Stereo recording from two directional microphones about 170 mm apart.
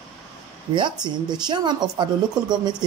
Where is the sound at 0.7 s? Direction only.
25° right (ahead or behind).